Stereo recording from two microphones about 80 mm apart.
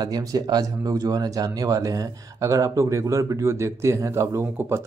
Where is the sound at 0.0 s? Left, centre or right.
Right.